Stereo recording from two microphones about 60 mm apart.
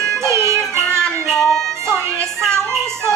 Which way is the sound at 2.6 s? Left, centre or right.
Right.